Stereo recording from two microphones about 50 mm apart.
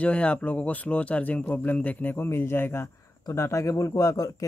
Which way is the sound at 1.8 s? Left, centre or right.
Left.